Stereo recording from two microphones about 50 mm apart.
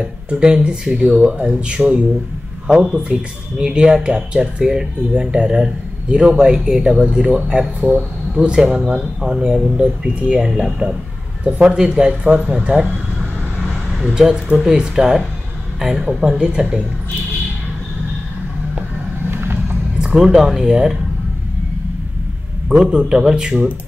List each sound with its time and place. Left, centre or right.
0.3 s speech: centre
12.3 s speech: right
12.5 s speech: centre
20.2 s speech: centre
22.7 s speech: centre